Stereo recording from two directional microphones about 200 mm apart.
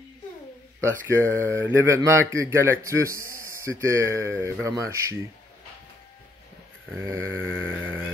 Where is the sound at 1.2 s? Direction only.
10° left (ahead or behind).